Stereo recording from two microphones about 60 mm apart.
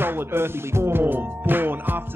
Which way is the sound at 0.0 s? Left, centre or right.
Right.